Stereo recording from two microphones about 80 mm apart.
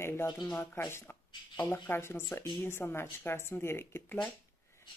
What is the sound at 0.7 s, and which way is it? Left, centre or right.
A woman's voice, left.